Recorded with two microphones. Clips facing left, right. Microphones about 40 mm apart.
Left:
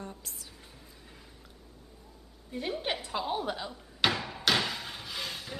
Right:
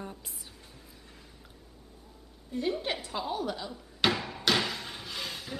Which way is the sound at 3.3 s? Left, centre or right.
Left.